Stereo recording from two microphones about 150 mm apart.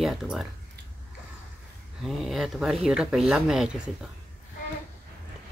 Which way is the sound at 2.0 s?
Centre (ahead or behind).